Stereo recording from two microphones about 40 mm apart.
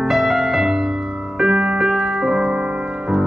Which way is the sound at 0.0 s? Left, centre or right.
Centre.